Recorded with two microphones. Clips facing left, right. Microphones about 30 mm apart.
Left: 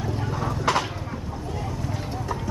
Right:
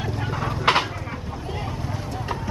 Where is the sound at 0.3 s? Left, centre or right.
Right.